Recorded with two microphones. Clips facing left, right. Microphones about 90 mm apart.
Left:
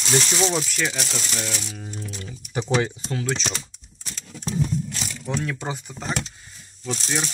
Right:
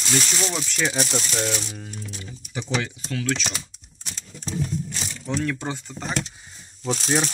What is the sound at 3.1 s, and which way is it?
Speech, 30° left (ahead or behind).